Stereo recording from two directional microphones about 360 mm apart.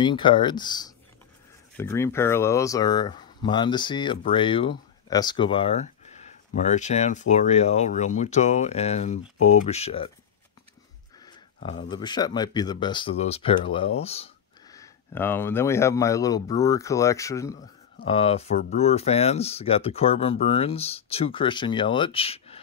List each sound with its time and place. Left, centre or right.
0.0 s speech: centre
11.2 s a sound: centre
11.9 s speech: centre